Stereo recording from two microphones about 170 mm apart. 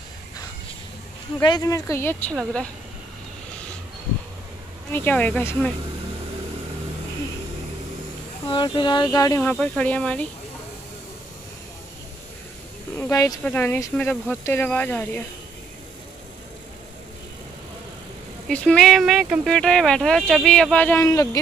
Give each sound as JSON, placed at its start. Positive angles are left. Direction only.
{"t": 1.4, "sound": "speech", "side_deg": 25}
{"t": 4.9, "sound": "speech", "side_deg": 10}
{"t": 8.5, "sound": "speech", "side_deg": 30}
{"t": 9.4, "sound": "speech", "side_deg": 5}
{"t": 13.1, "sound": "speech", "side_deg": 20}
{"t": 18.5, "sound": "speech", "side_deg": 5}